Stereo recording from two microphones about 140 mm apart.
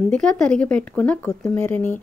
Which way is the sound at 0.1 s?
5° left (ahead or behind).